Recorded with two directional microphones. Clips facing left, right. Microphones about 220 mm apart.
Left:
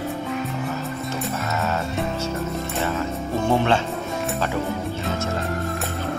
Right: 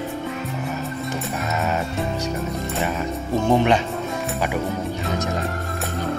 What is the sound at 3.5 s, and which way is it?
Music, 15° right (ahead or behind).